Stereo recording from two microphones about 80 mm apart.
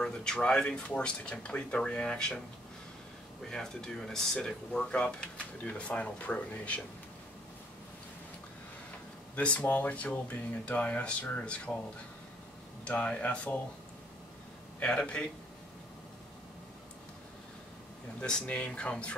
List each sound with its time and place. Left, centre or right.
0.0 s speech: centre
3.4 s speech: centre
9.3 s speech: centre
12.8 s speech: centre
14.8 s speech: centre
18.2 s speech: centre